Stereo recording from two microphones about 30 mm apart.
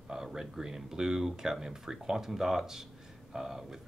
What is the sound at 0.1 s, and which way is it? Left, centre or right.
Speech, centre.